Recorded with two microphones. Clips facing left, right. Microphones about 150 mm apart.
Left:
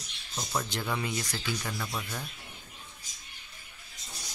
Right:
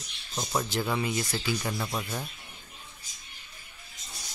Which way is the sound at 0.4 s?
15° right (ahead or behind).